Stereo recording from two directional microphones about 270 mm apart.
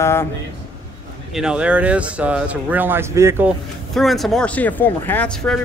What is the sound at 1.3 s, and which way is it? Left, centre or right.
Speech, centre.